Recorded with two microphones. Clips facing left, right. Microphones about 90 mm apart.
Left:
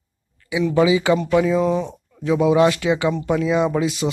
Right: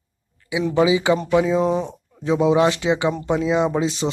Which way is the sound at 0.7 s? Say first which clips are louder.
Left 1 dB; 20° right (ahead or behind).